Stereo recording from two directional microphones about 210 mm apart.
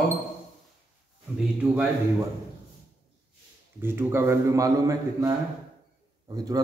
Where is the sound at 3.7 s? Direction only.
10° right (ahead or behind).